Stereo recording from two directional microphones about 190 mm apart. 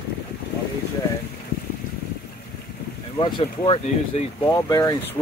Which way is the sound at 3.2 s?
25° left (ahead or behind).